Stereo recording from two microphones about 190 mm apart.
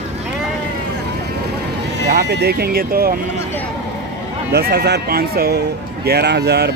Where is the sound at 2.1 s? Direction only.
55° right (ahead or behind).